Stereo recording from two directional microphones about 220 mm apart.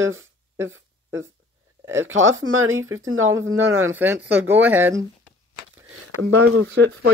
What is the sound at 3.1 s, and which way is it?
Speech, 65° right (ahead or behind).